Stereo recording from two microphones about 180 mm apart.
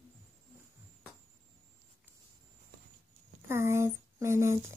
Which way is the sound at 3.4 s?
15° right (ahead or behind).